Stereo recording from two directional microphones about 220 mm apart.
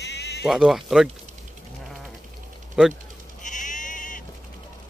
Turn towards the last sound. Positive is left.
turn(degrees=35)  # may be behind; listen again after turning